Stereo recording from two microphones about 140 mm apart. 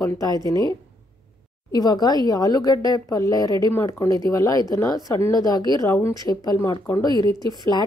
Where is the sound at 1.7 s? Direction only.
30° left (ahead or behind).